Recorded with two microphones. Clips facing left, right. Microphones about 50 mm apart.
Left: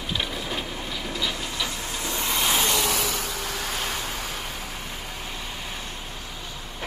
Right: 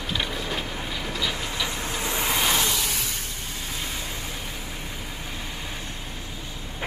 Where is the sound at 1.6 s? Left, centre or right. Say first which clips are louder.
Right 2 dB; right.